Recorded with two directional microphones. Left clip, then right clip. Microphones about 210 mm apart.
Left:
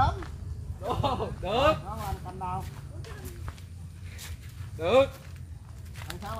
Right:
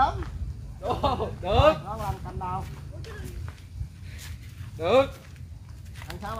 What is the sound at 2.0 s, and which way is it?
Speech, 20° right (ahead or behind).